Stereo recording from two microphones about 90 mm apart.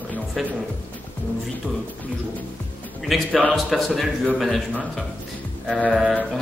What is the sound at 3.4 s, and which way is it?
Speech, 5° left (ahead or behind).